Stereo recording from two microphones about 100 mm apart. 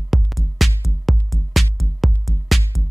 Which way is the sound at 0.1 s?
Centre (ahead or behind).